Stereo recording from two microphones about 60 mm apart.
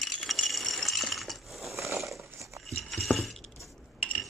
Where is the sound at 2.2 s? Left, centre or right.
Right.